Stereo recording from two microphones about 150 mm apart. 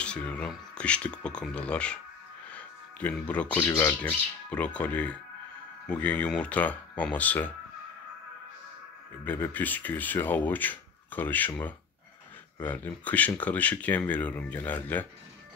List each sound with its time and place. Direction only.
0.0 s speech: 10° left (ahead or behind)
2.5 s music: 10° left (ahead or behind)
3.6 s speech: 20° left (ahead or behind)
9.2 s speech: 10° left (ahead or behind)
12.5 s speech: 10° left (ahead or behind)